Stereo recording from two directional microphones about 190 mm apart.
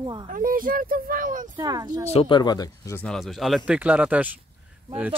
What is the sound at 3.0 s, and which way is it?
Speech, centre (ahead or behind).